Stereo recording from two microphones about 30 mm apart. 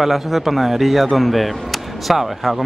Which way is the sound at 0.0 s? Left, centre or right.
Centre.